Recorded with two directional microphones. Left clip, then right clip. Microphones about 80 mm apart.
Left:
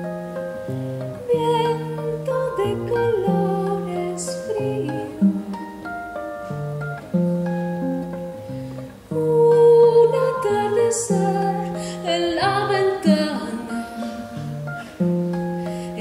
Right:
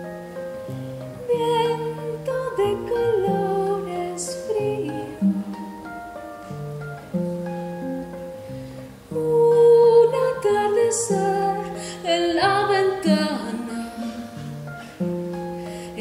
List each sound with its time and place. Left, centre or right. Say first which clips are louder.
1.3 s music: left 1 dB; centre
7.1 s music: left 4 dB; left
9.6 s music: even; centre
15.0 s music: left 4 dB; centre